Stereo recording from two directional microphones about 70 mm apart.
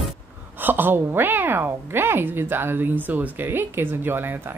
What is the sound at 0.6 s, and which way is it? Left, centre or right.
A woman's voice, right.